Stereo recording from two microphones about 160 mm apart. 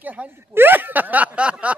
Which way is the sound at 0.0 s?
10° right (ahead or behind).